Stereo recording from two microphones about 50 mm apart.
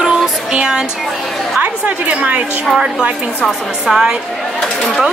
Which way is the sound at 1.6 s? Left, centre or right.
Right.